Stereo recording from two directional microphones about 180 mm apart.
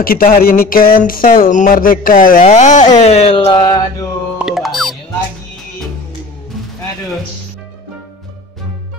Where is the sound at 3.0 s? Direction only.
35° left (ahead or behind).